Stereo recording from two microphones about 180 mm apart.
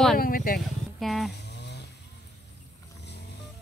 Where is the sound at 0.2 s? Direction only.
55° left (ahead or behind).